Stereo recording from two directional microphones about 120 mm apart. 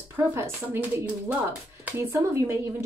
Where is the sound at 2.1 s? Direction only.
25° right (ahead or behind).